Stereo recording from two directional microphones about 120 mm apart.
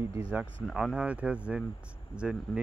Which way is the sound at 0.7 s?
5° right (ahead or behind).